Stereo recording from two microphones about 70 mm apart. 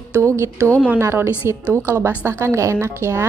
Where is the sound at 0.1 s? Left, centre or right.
Right.